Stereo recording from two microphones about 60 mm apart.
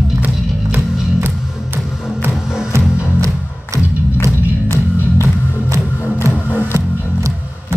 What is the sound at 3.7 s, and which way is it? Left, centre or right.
Music, right.